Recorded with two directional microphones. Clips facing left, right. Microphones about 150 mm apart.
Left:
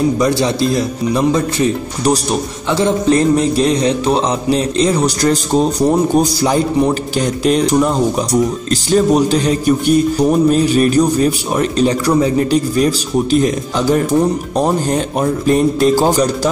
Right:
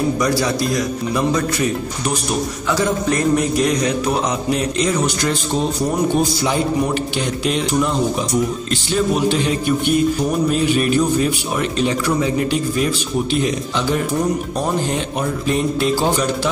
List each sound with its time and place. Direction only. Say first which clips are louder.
0.2 s music: left 4 dB; 25° left (ahead or behind)
6.1 s speech: left 5 dB; 40° left (ahead or behind)